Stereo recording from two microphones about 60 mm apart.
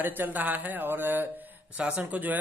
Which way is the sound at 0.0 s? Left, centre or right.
Right.